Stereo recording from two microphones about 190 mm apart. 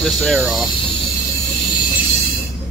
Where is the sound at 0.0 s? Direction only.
Centre (ahead or behind).